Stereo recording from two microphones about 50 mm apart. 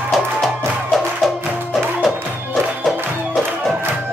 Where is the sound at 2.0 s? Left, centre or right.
Centre.